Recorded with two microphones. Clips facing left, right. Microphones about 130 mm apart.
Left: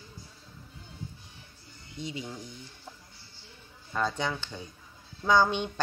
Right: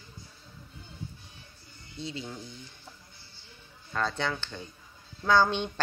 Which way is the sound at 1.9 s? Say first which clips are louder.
Even; 15° left (ahead or behind).